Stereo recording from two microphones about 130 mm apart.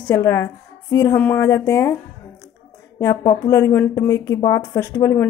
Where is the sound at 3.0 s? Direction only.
25° left (ahead or behind).